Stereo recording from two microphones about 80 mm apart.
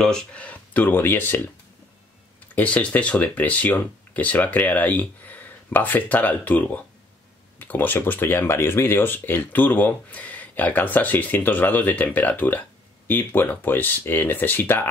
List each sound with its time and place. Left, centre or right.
0.0 s speech: centre; by 1.4 s left
2.5 s speech: centre